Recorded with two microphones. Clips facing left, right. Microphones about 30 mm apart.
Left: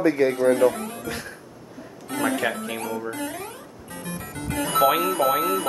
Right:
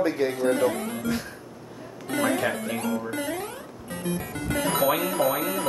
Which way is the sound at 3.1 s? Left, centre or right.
Centre.